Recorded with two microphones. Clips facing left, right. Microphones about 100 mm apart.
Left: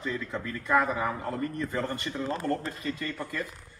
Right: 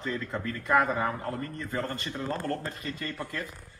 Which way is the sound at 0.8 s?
15° right (ahead or behind).